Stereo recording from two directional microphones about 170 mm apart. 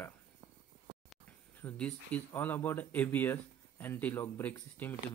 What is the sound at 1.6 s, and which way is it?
Speech, 5° left (ahead or behind).